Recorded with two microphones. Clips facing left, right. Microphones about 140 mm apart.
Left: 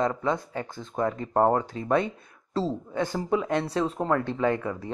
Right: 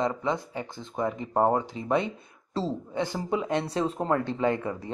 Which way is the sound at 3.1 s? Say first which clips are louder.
Left 3 dB; 25° right (ahead or behind).